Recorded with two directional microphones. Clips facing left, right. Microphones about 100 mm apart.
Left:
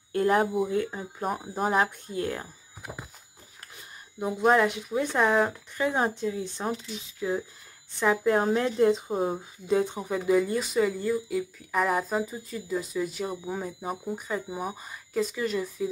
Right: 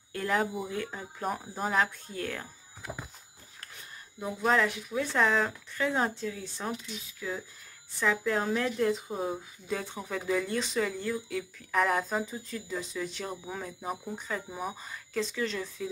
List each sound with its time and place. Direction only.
0.1 s a sound: 35° left (ahead or behind)
0.7 s speech: 15° left (ahead or behind)
4.4 s a woman's voice: 15° left (ahead or behind)
9.1 s speech: 45° left (ahead or behind)
9.7 s speech: 20° left (ahead or behind)